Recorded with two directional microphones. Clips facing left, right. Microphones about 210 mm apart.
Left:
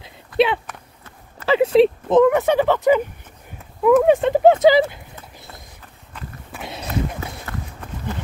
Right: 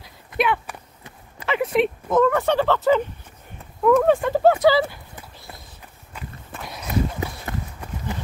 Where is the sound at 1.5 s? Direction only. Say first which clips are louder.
Left 7 dB; 30° left (ahead or behind).